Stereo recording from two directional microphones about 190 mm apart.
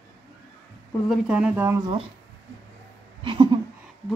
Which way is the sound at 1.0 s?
Centre (ahead or behind).